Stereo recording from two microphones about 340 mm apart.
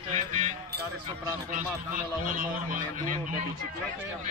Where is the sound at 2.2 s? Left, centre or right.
Right.